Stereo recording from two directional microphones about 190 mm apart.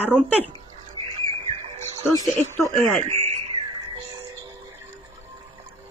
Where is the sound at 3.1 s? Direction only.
35° right (ahead or behind).